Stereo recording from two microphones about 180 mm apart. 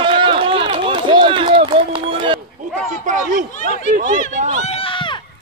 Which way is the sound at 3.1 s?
45° right (ahead or behind).